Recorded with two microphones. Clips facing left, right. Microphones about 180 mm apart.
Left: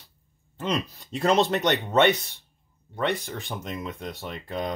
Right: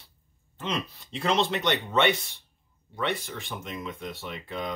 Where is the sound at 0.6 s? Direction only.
45° left (ahead or behind).